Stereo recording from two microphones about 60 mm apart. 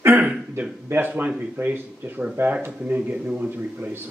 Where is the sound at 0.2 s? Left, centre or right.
Right.